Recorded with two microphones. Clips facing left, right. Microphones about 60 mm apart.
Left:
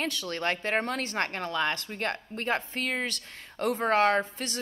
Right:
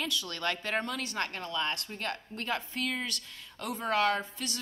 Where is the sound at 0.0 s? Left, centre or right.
Left.